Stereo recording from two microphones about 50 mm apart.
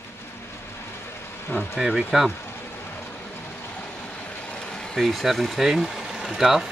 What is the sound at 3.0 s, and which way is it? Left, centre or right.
Vehicle, left.